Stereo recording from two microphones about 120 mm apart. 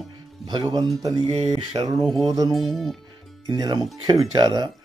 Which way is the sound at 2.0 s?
Centre (ahead or behind).